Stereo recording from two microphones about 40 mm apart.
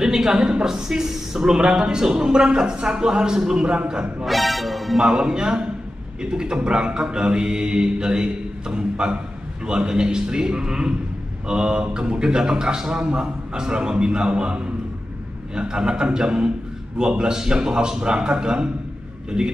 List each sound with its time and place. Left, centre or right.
0.0 s a woman's voice: centre
4.3 s speech: centre
6.3 s mantra: right
19.3 s a woman's voice: centre